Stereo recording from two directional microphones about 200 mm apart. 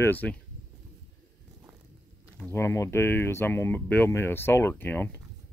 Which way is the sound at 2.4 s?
10° left (ahead or behind).